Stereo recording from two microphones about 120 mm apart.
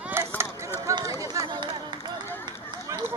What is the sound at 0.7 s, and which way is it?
Run, 30° right (ahead or behind).